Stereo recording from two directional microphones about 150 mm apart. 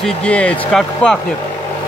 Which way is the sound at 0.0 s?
5° left (ahead or behind).